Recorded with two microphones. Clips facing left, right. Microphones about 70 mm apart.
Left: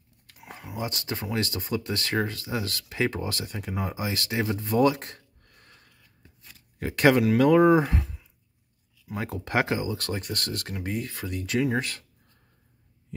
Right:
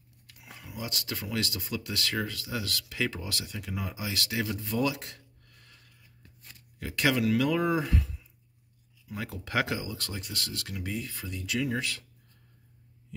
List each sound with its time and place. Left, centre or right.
0.3 s speech: left
9.1 s speech: left
11.0 s speech: left